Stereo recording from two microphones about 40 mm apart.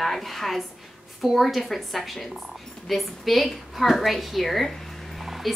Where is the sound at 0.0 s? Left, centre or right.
Centre.